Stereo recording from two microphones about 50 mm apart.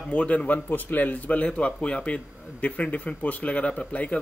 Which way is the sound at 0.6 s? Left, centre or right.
Left.